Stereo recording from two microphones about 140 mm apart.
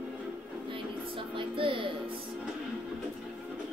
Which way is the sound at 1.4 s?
40° right (ahead or behind).